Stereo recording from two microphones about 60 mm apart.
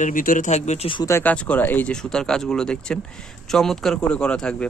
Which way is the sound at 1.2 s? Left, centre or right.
Left.